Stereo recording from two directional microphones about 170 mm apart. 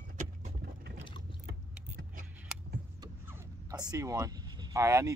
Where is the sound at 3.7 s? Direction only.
25° right (ahead or behind).